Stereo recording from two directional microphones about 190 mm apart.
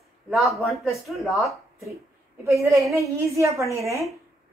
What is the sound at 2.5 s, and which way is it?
A woman's voice, 15° right (ahead or behind).